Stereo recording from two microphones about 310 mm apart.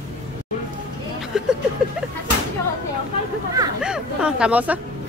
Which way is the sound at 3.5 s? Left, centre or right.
Centre.